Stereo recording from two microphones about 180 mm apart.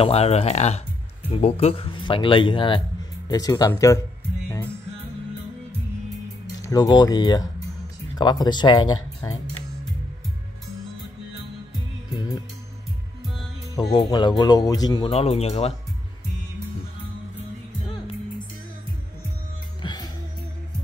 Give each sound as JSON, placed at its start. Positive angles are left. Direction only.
{"t": 0.0, "sound": "speech", "side_deg": 35}
{"t": 6.6, "sound": "speech", "side_deg": 20}
{"t": 13.8, "sound": "speech", "side_deg": 25}
{"t": 19.8, "sound": "music", "side_deg": 25}